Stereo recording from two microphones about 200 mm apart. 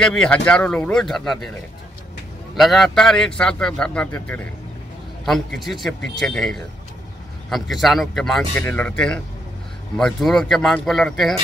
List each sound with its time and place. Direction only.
0.0 s a man's voice: 5° left (ahead or behind)
2.5 s a man's voice: centre (ahead or behind)